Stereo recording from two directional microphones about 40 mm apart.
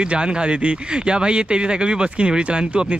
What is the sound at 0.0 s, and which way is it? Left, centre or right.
Speech, right.